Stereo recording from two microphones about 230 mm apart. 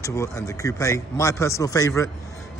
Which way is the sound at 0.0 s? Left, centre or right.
Centre.